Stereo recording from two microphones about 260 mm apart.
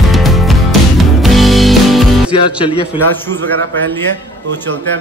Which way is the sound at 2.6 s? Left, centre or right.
Centre.